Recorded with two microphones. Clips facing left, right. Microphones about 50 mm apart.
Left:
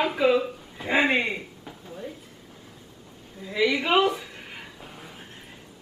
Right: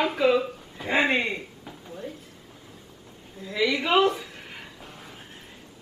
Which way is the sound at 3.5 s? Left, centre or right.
Centre.